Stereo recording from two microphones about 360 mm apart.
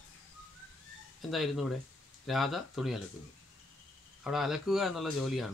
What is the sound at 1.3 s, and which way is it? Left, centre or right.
Speech, centre.